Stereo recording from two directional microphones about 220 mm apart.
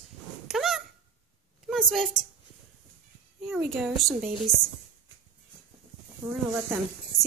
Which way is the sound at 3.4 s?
5° right (ahead or behind).